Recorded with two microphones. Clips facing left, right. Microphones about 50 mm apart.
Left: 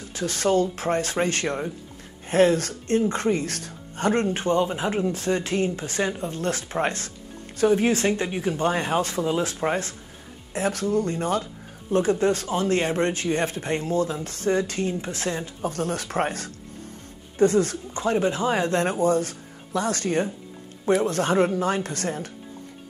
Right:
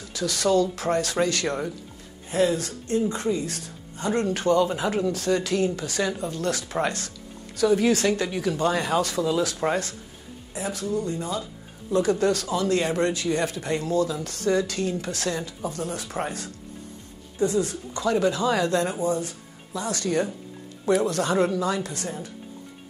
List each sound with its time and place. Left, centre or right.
0.1 s speech: left
2.2 s a woman's voice: left
4.2 s speech: left
10.5 s speech: left
11.9 s speech: left
15.6 s speech: left
17.9 s speech: left
18.9 s speech: left